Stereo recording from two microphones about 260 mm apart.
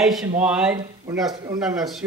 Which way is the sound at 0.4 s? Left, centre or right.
Centre.